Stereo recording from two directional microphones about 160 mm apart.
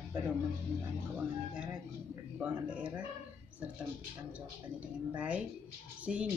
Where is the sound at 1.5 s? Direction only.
5° right (ahead or behind).